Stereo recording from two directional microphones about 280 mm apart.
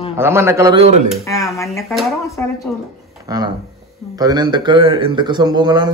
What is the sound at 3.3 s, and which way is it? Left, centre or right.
A man's voice, centre.